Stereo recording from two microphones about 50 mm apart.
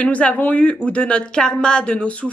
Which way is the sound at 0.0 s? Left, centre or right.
Left.